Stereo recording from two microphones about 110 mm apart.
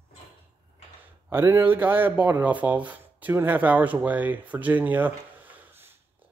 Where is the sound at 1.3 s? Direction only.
20° right (ahead or behind).